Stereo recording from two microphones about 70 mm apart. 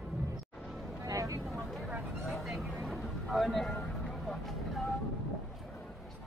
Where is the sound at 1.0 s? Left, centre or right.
Right.